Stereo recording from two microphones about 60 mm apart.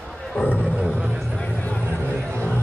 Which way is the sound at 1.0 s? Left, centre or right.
Centre.